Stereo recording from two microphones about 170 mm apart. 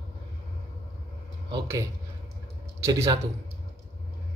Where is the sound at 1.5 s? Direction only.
20° right (ahead or behind).